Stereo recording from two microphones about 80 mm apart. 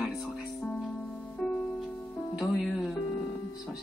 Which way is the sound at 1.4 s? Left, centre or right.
Centre.